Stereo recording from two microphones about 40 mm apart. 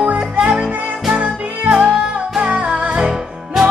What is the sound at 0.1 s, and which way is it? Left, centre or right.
Music, right.